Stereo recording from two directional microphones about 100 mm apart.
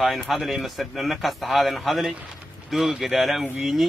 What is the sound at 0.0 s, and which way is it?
A man's voice, centre (ahead or behind).